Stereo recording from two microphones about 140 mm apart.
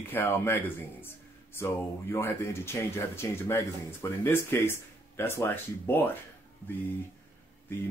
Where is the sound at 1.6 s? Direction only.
20° left (ahead or behind).